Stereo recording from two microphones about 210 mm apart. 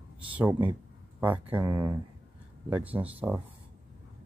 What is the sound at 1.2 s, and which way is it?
Speech, 10° right (ahead or behind).